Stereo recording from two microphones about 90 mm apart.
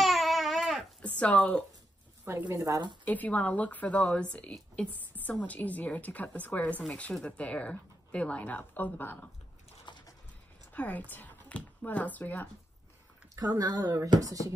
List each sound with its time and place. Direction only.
0.0 s babbling: centre (ahead or behind)
1.0 s speech: 15° left (ahead or behind)
2.2 s a woman's voice: 30° right (ahead or behind)
3.1 s a woman's voice: 20° left (ahead or behind)
9.9 s pigeon: 60° left (ahead or behind)
10.7 s speech: 20° left (ahead or behind)
13.4 s speech: 45° right (ahead or behind)